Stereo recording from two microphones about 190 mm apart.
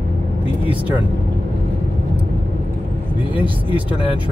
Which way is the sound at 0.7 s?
10° right (ahead or behind).